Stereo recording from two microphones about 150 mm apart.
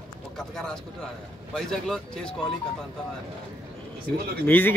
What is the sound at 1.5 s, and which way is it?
Speech, 5° left (ahead or behind).